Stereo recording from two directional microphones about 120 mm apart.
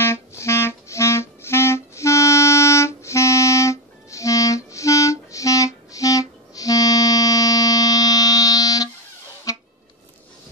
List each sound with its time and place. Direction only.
0.0 s clarinet: 20° left (ahead or behind)
9.5 s music: 30° left (ahead or behind)